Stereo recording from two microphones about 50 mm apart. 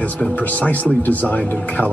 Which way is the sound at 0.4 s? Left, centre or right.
Left.